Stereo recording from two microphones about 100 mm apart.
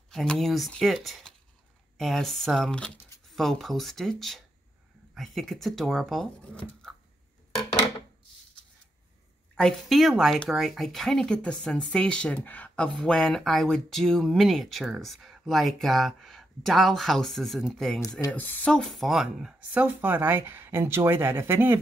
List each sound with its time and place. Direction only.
0.1 s speech: 5° left (ahead or behind)
9.6 s speech: 5° left (ahead or behind)
18.3 s speech: 15° left (ahead or behind); by 19.5 s centre (ahead or behind)
19.7 s speech: 20° right (ahead or behind)